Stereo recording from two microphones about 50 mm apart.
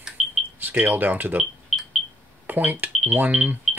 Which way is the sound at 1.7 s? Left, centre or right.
Centre.